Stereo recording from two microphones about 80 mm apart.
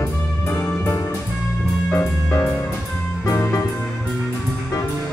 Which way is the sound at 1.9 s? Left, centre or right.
Left.